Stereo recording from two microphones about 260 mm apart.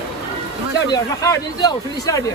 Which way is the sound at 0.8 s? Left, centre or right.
Centre.